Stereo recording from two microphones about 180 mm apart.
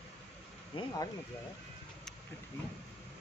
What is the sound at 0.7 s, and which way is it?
Speech, 25° left (ahead or behind).